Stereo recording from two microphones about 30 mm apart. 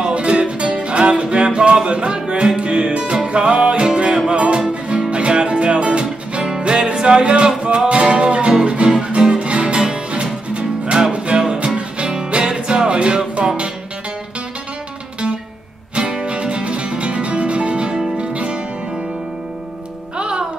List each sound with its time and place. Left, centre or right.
0.1 s music: right
11.2 s music: right
15.9 s music: right
20.2 s music: right